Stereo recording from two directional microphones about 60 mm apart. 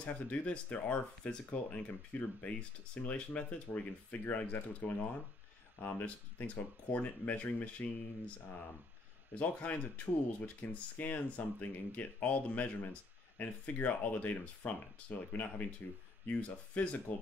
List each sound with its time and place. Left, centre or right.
0.0 s speech: left
9.3 s speech: left